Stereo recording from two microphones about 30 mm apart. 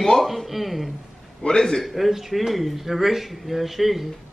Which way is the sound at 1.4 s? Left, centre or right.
Left.